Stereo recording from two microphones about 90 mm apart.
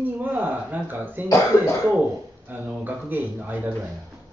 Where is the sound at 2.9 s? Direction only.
20° right (ahead or behind).